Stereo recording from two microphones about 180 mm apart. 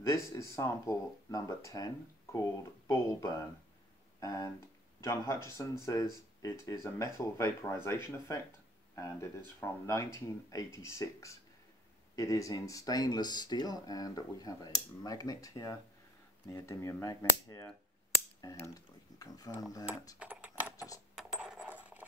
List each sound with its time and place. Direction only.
0.1 s speech: 20° left (ahead or behind)
19.1 s speech: 20° left (ahead or behind)
20.2 s a sound: 10° right (ahead or behind)
21.1 s coin: 5° right (ahead or behind)